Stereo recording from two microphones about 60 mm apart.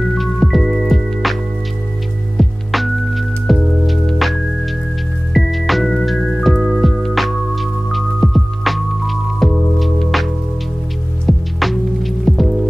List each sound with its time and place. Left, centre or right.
0.1 s music: centre